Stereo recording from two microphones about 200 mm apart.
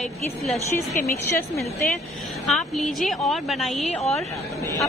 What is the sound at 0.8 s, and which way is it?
Speech, 15° left (ahead or behind).